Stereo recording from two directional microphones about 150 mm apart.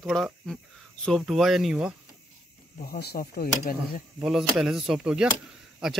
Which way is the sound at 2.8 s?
85° left.